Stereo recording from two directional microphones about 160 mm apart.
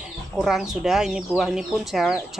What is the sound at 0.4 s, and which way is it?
Speech, centre (ahead or behind).